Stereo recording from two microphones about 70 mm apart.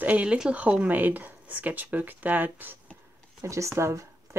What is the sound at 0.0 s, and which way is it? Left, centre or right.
Speech, centre.